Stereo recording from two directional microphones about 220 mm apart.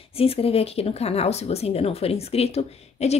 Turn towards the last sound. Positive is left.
turn(degrees=30)  # may be behind; listen again after turning